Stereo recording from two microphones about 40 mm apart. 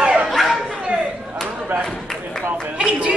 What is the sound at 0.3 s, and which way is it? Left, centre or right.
Bow-wow, centre.